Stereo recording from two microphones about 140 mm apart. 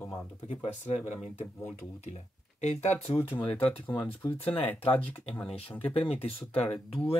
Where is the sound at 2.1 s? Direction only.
55° left (ahead or behind).